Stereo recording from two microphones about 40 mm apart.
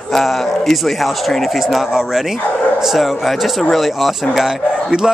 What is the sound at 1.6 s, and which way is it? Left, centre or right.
A man's voice, centre.